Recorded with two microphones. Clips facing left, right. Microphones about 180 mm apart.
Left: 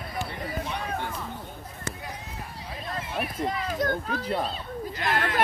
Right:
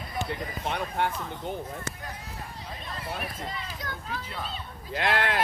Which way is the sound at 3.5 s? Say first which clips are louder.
Left 10 dB; 50° left (ahead or behind).